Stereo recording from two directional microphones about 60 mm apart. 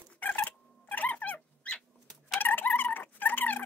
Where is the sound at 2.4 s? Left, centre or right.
Left.